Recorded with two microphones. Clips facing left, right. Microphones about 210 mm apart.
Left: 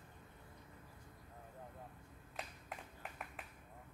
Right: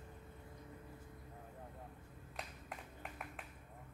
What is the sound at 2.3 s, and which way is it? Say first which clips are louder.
Finger snapping: even; centre (ahead or behind).